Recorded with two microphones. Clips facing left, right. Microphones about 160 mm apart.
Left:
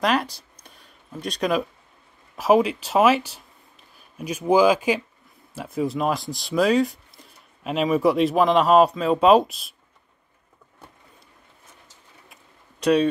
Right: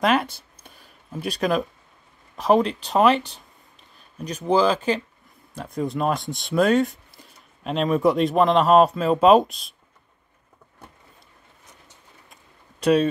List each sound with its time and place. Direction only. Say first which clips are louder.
0.0 s speech: right 2 dB; centre (ahead or behind)
0.7 s a sound: right 3 dB; centre (ahead or behind)
2.3 s speech: left 1 dB; 5° left (ahead or behind)
12.8 s speech: even; centre (ahead or behind)